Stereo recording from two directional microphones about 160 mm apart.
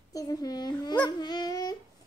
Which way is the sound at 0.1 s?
20° left (ahead or behind).